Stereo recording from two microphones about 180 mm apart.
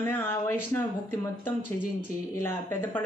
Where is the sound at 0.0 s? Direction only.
10° left (ahead or behind).